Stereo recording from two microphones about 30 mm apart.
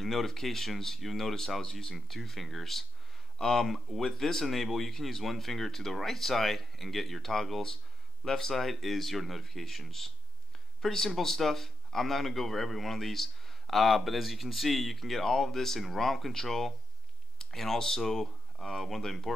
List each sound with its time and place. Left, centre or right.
0.0 s speech: centre
8.5 s speech: centre